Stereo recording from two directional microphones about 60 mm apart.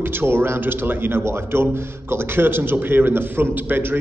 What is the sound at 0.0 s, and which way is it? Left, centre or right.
A man's voice, right.